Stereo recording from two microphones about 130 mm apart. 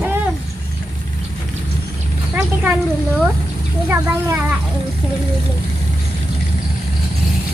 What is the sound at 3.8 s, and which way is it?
Speech, 20° right (ahead or behind).